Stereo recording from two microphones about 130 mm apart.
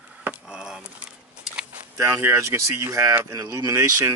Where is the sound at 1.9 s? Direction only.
20° right (ahead or behind).